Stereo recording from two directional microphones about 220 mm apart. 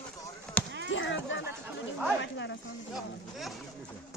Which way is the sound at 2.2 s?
55° left (ahead or behind).